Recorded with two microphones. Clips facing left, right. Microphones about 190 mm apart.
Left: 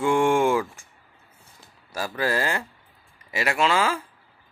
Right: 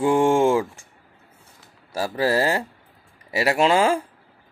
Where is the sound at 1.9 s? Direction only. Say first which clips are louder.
Right 4 dB; 30° right (ahead or behind).